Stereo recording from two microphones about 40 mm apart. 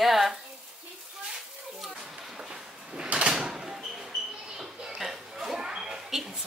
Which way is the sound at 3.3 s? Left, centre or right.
Centre.